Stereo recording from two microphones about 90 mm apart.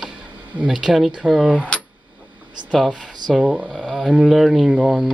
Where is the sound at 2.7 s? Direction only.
5° right (ahead or behind).